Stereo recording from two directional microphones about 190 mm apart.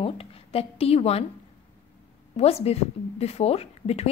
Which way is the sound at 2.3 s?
30° left (ahead or behind).